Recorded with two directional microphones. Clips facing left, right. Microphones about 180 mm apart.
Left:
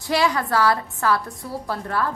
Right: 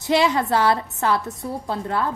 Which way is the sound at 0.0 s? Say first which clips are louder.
Right 2 dB; 20° right (ahead or behind).